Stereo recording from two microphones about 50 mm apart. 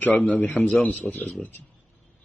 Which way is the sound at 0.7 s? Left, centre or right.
Left.